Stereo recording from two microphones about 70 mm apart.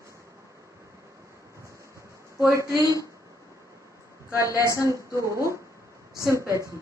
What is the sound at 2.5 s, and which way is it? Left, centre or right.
Speech, right.